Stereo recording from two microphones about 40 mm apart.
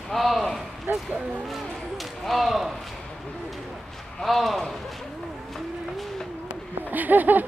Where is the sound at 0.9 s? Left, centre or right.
Right.